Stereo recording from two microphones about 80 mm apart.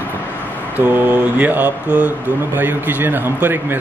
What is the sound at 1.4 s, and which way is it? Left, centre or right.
Speech, centre.